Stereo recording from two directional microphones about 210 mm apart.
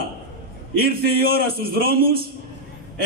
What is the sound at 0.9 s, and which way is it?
A man's voice, 45° right (ahead or behind).